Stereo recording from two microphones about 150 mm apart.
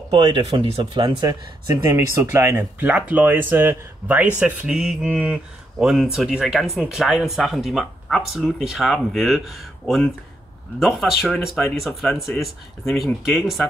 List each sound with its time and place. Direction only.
0.1 s speech: 35° right (ahead or behind); by 13.7 s centre (ahead or behind)